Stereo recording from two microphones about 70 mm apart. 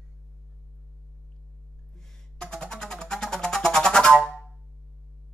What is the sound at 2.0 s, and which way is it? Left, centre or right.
Music, centre.